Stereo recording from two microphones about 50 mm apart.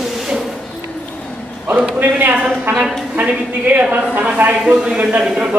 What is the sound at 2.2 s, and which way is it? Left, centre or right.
A man's voice, right.